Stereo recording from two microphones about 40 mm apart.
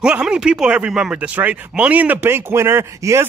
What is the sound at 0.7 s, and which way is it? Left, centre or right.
Speech, right.